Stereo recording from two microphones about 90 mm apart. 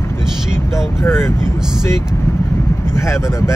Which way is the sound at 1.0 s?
30° left (ahead or behind).